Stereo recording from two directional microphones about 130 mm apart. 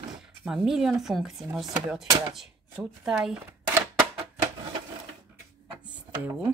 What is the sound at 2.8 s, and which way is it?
Speech, 10° right (ahead or behind).